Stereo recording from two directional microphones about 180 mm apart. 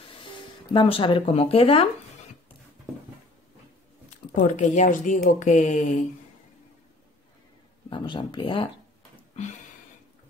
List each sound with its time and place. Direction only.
0.7 s speech: 30° left (ahead or behind)
4.4 s speech: 40° left (ahead or behind)
7.9 s speech: 25° left (ahead or behind)